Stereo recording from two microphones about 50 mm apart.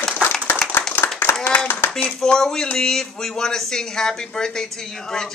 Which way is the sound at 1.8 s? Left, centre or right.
Left.